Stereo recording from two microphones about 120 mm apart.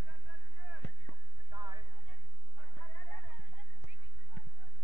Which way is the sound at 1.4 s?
35° right (ahead or behind).